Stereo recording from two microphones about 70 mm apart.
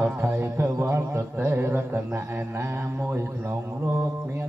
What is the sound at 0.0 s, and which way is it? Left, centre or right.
Music, right.